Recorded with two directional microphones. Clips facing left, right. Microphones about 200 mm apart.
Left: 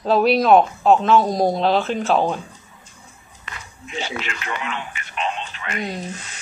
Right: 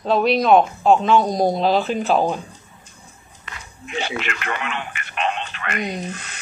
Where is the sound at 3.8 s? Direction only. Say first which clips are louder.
Right 2 dB; 60° right (ahead or behind).